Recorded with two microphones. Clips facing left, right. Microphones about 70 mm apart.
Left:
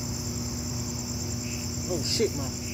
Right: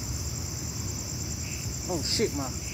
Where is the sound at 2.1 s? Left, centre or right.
Right.